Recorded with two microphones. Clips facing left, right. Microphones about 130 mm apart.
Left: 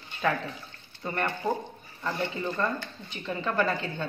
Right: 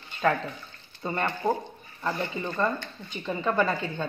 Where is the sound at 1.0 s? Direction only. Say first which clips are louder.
Right 2 dB; 20° right (ahead or behind).